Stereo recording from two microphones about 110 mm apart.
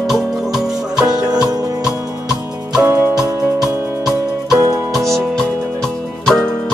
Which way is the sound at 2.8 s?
20° right (ahead or behind).